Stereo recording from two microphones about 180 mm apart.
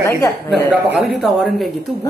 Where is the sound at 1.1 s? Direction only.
Centre (ahead or behind).